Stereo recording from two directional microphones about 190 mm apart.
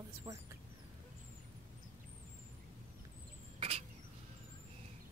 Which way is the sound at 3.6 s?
30° right (ahead or behind).